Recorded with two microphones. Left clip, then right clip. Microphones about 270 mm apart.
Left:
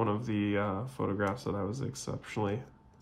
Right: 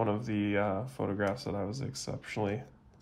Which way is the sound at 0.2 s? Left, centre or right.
Centre.